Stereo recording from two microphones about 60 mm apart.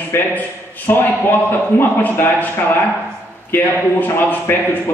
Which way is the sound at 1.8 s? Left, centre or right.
Left.